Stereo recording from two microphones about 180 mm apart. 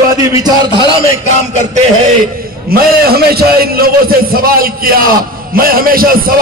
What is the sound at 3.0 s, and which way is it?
A man's voice, 60° right (ahead or behind).